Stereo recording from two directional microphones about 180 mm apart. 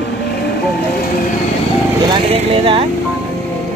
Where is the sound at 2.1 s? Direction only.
30° right (ahead or behind).